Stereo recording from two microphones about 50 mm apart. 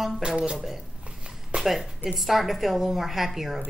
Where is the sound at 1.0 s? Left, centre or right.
Right.